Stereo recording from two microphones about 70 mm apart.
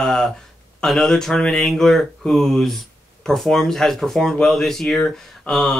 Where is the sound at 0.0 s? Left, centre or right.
Centre.